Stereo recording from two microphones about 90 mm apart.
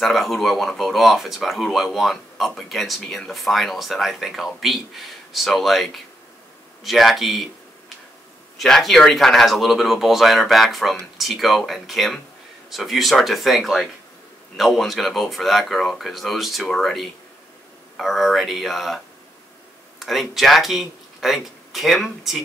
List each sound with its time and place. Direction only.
0.0 s speech: centre (ahead or behind)
8.5 s speech: 5° left (ahead or behind)
20.0 s speech: centre (ahead or behind)